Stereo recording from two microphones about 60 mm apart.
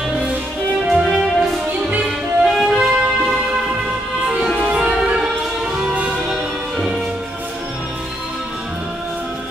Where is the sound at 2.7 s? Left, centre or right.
Centre.